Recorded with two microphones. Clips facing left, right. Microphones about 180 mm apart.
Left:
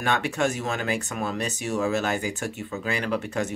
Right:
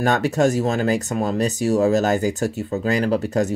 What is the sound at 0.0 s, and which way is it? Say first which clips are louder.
Speech: right 7 dB; 40° right (ahead or behind).